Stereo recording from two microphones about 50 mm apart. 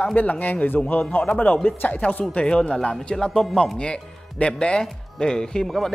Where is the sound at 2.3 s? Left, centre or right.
Left; by 3.6 s centre.